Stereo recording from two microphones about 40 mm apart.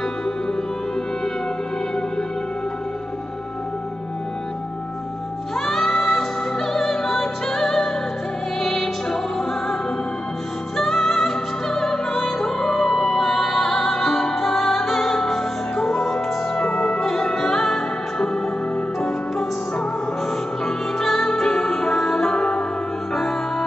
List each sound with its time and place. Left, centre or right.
5.7 s music: centre
10.8 s music: centre
20.6 s music: centre